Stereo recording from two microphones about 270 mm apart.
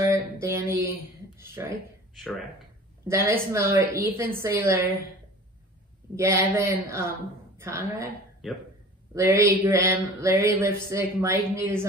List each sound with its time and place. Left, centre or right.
0.0 s music: centre
3.1 s speech: centre
6.1 s a woman's voice: centre